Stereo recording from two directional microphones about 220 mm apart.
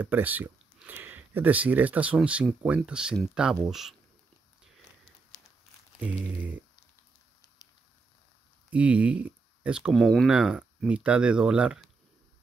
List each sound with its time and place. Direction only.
0.0 s speech: 10° right (ahead or behind)
5.9 s speech: 5° right (ahead or behind)
7.4 s fire: 15° left (ahead or behind)
8.6 s speech: 5° right (ahead or behind)